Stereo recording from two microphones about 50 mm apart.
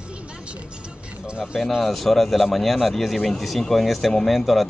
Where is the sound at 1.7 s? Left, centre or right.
Centre.